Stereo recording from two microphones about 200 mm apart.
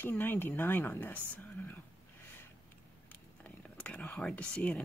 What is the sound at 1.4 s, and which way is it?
Whispering, 10° left (ahead or behind).